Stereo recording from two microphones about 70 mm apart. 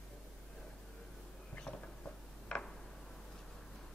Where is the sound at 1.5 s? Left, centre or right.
Centre.